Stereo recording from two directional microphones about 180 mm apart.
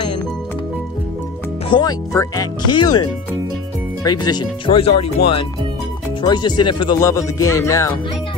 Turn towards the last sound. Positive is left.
turn(degrees=15)  # may be behind; listen again after turning